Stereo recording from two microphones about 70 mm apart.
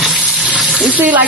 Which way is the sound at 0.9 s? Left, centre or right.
Right.